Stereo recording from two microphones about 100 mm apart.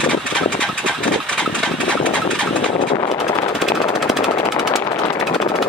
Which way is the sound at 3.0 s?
65° left (ahead or behind).